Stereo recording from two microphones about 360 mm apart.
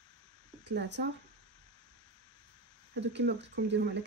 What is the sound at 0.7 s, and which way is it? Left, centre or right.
Speech, right.